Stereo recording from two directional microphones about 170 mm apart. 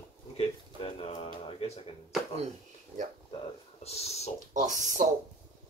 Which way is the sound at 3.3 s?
40° left (ahead or behind).